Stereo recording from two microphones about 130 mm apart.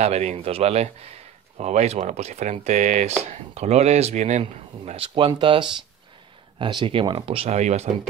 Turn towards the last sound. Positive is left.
turn(degrees=-60)  # may be behind; listen again after turning